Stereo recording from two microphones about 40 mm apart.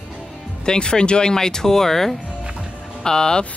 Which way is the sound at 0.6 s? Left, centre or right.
Centre.